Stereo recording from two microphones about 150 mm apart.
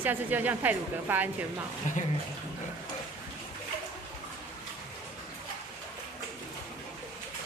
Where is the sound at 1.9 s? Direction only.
55° left (ahead or behind).